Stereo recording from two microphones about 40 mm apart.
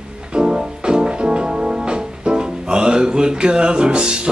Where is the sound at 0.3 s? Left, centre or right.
Right.